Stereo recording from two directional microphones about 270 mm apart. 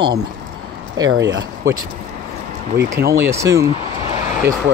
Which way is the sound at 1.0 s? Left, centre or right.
Right.